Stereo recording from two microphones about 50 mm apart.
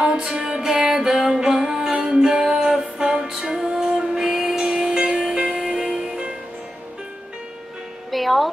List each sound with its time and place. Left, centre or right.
0.0 s music: centre
8.1 s music: centre